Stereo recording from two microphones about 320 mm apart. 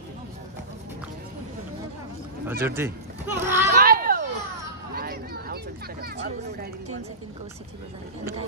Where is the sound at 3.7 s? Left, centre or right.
Right.